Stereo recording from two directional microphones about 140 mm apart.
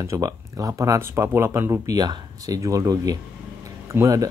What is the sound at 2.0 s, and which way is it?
Speech, 30° right (ahead or behind).